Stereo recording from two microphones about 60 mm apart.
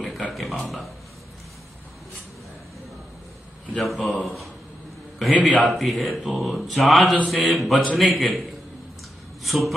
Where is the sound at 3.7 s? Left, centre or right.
Centre.